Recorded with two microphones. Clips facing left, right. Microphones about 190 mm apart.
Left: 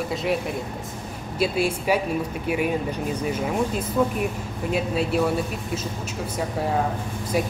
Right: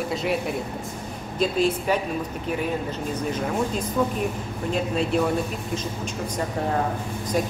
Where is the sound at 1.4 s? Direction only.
10° left (ahead or behind).